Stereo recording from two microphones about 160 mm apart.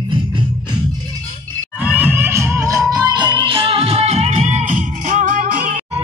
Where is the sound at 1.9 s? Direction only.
10° right (ahead or behind); by 5.8 s 60° right (ahead or behind).